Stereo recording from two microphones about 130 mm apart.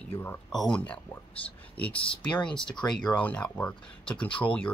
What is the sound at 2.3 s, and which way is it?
Speech, 10° left (ahead or behind).